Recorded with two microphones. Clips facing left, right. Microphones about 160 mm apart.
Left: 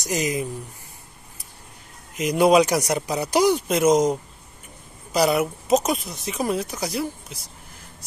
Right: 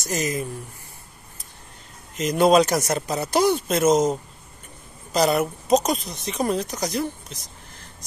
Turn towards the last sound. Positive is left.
turn(degrees=5)  # may be behind; listen again after turning